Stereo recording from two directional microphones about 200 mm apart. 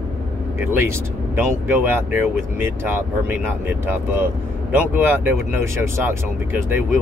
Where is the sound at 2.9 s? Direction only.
10° right (ahead or behind).